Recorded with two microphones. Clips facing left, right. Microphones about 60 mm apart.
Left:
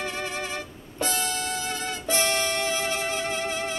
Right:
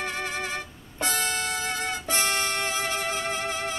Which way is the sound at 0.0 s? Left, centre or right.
Right.